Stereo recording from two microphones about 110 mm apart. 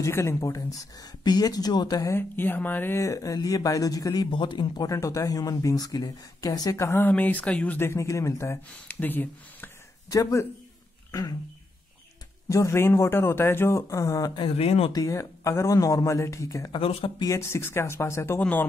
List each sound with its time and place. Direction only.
0.0 s speech: 25° left (ahead or behind)
2.1 s speech: 20° left (ahead or behind)
3.0 s speech: 30° left (ahead or behind)
4.8 s speech: 30° left (ahead or behind)
6.9 s speech: 15° left (ahead or behind)
11.1 s speech: 35° left (ahead or behind)
12.4 s speech: 30° left (ahead or behind)
14.4 s speech: 60° left (ahead or behind)
14.9 s speech: 30° left (ahead or behind)
16.7 s speech: 50° left (ahead or behind)
17.2 s speech: 25° left (ahead or behind)